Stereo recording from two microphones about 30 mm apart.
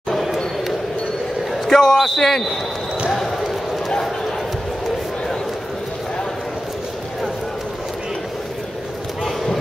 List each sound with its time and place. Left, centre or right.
1.7 s a man's voice: centre